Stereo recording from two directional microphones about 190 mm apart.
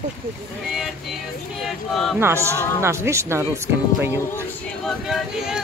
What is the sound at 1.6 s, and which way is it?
Speech, centre (ahead or behind).